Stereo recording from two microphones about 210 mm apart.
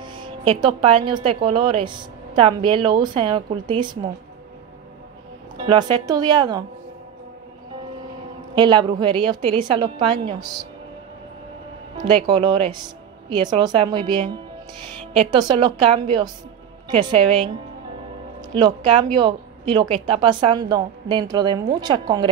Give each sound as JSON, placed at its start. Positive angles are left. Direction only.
{"t": 0.0, "sound": "a woman's voice", "side_deg": -20}
{"t": 5.7, "sound": "a woman's voice", "side_deg": -25}
{"t": 8.5, "sound": "a woman's voice", "side_deg": -20}
{"t": 12.2, "sound": "a woman's voice", "side_deg": -25}
{"t": 15.1, "sound": "a woman's voice", "side_deg": -25}
{"t": 18.5, "sound": "a woman's voice", "side_deg": -20}